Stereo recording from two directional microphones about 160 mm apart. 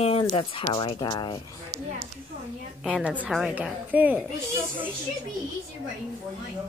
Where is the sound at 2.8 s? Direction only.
5° right (ahead or behind).